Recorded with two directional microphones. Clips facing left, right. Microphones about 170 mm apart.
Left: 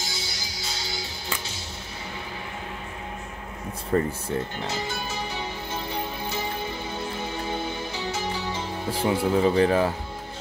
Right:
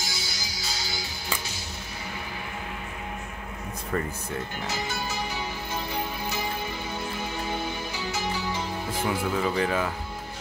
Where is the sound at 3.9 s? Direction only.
30° left (ahead or behind).